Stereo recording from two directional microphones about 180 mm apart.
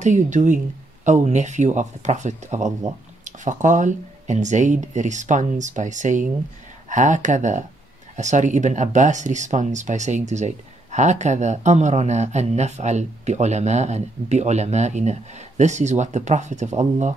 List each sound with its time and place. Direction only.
0.0 s speech: 40° right (ahead or behind)